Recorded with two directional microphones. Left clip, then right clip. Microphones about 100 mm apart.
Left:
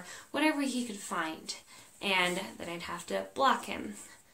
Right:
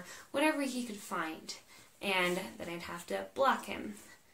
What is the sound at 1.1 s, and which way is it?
Speech, 30° left (ahead or behind).